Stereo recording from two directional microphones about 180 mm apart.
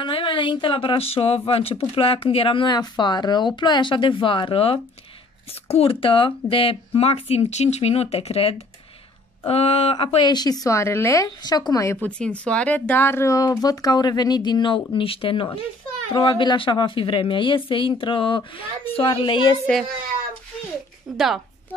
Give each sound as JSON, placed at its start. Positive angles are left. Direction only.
{"t": 0.0, "sound": "a woman's voice", "side_deg": 30}
{"t": 19.6, "sound": "a child's voice", "side_deg": 0}